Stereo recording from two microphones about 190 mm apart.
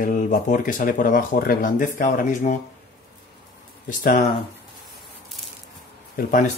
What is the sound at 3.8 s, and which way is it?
Speech, 45° left (ahead or behind).